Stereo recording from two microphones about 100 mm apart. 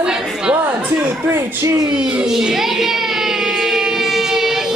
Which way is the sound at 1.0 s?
25° right (ahead or behind).